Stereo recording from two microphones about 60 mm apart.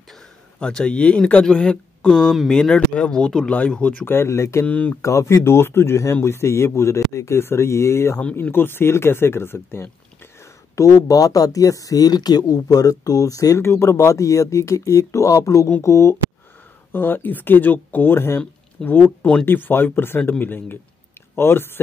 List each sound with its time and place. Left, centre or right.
0.6 s speech: centre
2.1 s speech: centre
4.0 s speech: left
4.3 s speech: left
4.6 s speech: left
5.0 s speech: left
10.8 s speech: left
13.6 s speech: left
16.9 s speech: left
18.8 s speech: centre
19.4 s speech: left